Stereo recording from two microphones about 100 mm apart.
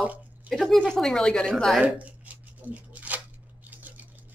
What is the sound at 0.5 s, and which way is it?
Speech, centre (ahead or behind).